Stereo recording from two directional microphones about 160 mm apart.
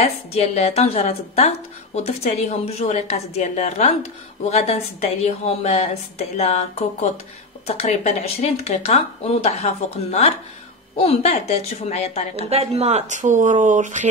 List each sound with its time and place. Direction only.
0.0 s a woman's voice: 40° left (ahead or behind)
11.0 s speech: 40° left (ahead or behind)
12.4 s speech: 40° right (ahead or behind)